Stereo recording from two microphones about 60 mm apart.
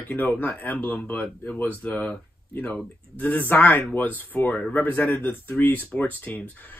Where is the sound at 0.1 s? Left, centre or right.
Left.